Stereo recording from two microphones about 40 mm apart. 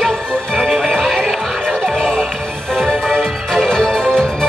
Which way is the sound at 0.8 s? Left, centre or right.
Centre.